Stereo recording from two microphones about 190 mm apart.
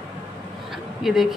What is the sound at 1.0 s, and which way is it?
Speech, centre (ahead or behind).